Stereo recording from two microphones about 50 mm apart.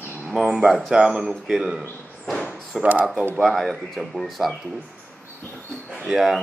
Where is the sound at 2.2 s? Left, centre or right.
Centre.